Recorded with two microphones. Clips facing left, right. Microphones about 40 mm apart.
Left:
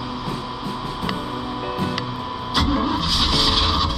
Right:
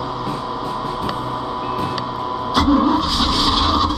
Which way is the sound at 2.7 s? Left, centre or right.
Centre.